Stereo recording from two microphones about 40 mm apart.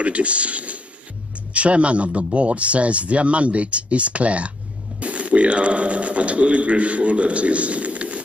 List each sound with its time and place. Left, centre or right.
0.0 s a man's voice: right